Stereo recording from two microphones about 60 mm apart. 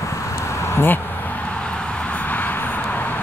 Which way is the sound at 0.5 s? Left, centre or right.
Left.